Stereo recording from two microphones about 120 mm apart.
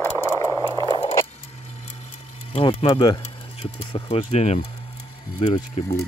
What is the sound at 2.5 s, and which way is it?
Speech, 50° left (ahead or behind).